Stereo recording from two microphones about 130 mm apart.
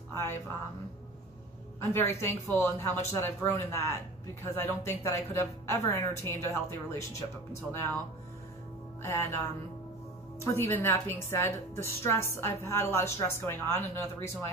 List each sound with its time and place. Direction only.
0.1 s speech: 20° left (ahead or behind)
1.8 s a woman's voice: 20° left (ahead or behind)
9.0 s a woman's voice: 20° left (ahead or behind)